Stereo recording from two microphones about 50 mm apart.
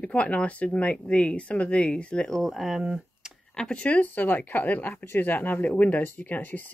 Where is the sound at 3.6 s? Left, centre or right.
Centre.